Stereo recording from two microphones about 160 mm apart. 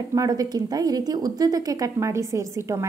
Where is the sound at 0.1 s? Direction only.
20° right (ahead or behind).